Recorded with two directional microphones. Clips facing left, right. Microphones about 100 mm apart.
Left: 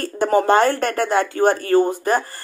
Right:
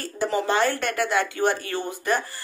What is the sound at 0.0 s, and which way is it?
A woman's voice, 50° left (ahead or behind).